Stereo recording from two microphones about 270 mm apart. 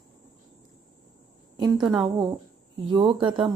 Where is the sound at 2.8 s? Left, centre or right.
Centre.